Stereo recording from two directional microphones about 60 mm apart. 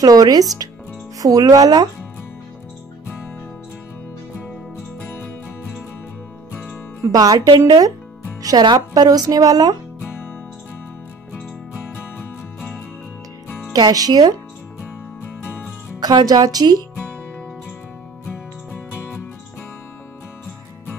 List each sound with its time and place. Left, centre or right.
0.0 s speech: right
6.5 s music: left
7.1 s speech: right
13.8 s speech: right
16.0 s speech: right